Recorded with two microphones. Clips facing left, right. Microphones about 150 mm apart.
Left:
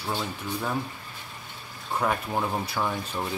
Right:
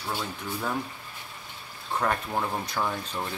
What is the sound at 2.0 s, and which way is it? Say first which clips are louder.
Speech: left 1 dB; 10° left (ahead or behind).